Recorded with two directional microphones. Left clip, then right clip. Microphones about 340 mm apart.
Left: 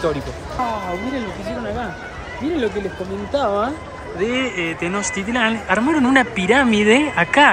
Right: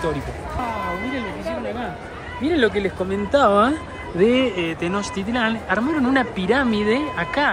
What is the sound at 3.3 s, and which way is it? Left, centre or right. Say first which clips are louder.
Speech: right 4 dB; right.